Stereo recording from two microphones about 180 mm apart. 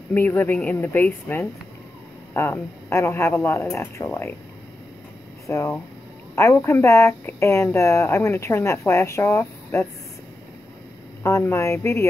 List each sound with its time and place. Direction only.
0.1 s speech: 10° left (ahead or behind)
5.5 s speech: 15° left (ahead or behind)
11.2 s speech: 15° left (ahead or behind)